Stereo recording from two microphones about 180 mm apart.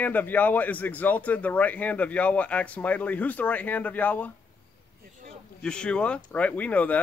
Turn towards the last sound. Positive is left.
turn(degrees=10)  # may be behind; listen again after turning